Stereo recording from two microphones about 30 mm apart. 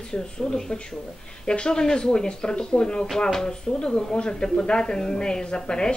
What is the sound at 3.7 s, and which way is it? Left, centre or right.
A woman's voice, left.